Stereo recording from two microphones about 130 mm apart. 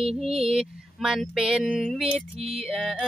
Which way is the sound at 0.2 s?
5° right (ahead or behind).